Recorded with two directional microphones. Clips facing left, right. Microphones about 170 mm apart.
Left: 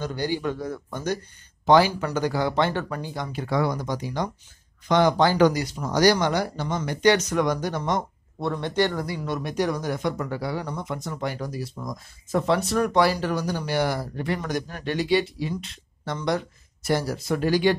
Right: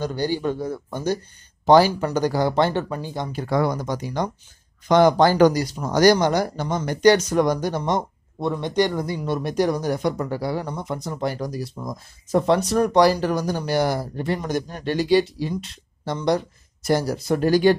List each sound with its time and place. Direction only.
0.0 s speech: 30° right (ahead or behind)
2.7 s speech: 25° right (ahead or behind)
3.3 s speech: 45° right (ahead or behind)
8.4 s speech: 15° right (ahead or behind); by 11.6 s 40° right (ahead or behind)
11.8 s speech: 25° right (ahead or behind)
12.4 s speech: 35° right (ahead or behind)